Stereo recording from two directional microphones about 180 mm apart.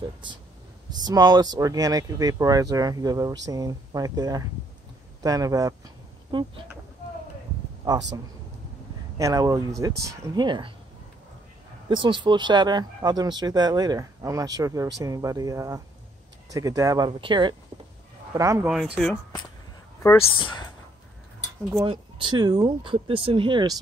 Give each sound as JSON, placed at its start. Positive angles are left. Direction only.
{"t": 0.0, "sound": "speech", "side_deg": -25}
{"t": 9.2, "sound": "speech", "side_deg": -20}
{"t": 11.9, "sound": "speech", "side_deg": -25}
{"t": 20.0, "sound": "a woman's voice", "side_deg": 15}
{"t": 20.3, "sound": "speech", "side_deg": 30}
{"t": 21.8, "sound": "speech", "side_deg": -30}